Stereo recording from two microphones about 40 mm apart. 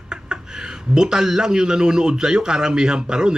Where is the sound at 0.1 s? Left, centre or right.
Centre.